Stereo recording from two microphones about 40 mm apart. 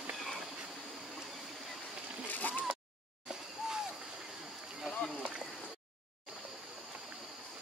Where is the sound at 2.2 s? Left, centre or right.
Left.